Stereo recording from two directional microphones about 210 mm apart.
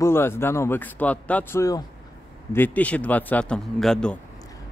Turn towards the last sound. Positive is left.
turn(degrees=5)  # may be behind; listen again after turning